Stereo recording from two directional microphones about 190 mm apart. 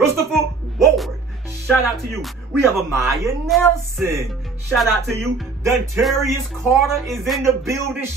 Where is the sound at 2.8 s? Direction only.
15° right (ahead or behind).